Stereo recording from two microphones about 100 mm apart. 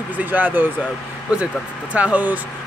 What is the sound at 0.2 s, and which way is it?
Speech, 15° right (ahead or behind).